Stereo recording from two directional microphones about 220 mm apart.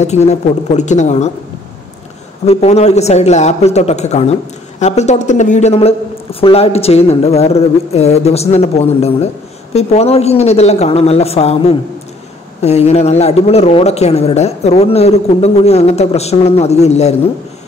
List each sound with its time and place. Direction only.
0.0 s a woman's voice: 30° left (ahead or behind)
2.4 s a man's voice: 30° left (ahead or behind)